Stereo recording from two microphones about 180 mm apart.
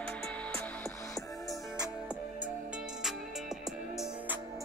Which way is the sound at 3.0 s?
Centre (ahead or behind).